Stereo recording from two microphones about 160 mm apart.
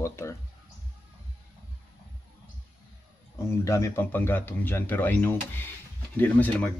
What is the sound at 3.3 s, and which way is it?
A man's voice, 15° left (ahead or behind).